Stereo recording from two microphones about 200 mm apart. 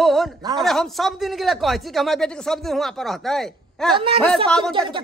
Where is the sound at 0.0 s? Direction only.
Centre (ahead or behind).